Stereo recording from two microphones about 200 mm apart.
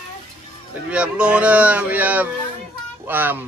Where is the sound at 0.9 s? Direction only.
5° right (ahead or behind).